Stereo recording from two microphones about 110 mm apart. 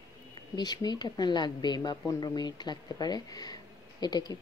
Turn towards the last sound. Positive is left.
turn(degrees=40)  # may be behind; listen again after turning